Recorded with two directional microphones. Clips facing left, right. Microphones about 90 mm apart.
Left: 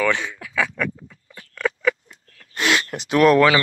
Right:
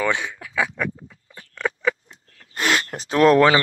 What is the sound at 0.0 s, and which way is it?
Speech, 20° right (ahead or behind).